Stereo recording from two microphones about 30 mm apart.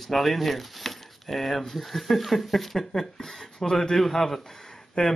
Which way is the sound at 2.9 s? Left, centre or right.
Centre.